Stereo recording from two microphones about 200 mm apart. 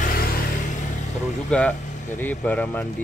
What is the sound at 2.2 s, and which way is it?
Speech, 10° left (ahead or behind).